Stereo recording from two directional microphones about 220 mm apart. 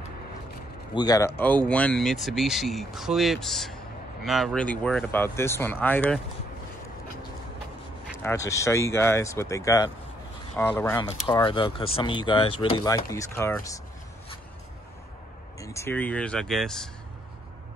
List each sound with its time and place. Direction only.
0.9 s speech: 15° left (ahead or behind)
8.2 s speech: 10° left (ahead or behind)
15.6 s speech: 15° left (ahead or behind)